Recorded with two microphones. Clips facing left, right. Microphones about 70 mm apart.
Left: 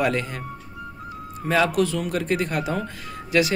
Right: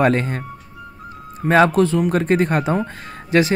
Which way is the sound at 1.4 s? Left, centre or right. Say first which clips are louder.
Right 6 dB; right.